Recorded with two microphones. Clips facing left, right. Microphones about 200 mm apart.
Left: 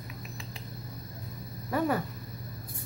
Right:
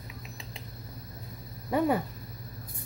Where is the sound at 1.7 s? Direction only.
20° right (ahead or behind).